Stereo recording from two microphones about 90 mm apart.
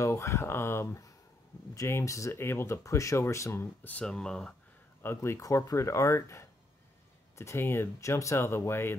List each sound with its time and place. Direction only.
0.0 s speech: 35° left (ahead or behind)
4.0 s speech: 10° left (ahead or behind)
5.0 s speech: 30° left (ahead or behind)